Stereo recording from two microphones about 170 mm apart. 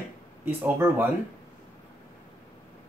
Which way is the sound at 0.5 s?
10° right (ahead or behind).